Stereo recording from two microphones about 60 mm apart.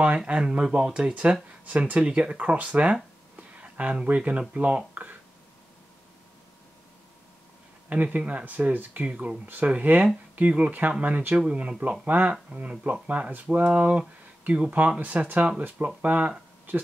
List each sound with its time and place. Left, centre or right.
0.3 s speech: centre
7.9 s speech: right